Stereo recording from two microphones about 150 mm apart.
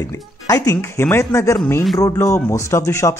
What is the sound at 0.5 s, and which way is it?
Speech, 20° left (ahead or behind).